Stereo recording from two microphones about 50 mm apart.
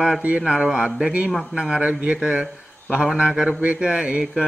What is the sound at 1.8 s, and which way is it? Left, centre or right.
Speech, right.